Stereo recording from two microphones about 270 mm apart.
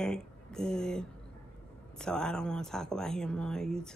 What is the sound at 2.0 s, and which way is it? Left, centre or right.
Speech, centre.